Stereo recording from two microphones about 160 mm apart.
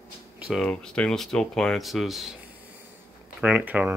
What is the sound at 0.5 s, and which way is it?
Speech, 5° left (ahead or behind).